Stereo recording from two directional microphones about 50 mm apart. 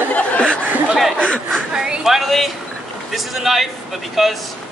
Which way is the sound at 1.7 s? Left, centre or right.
Centre.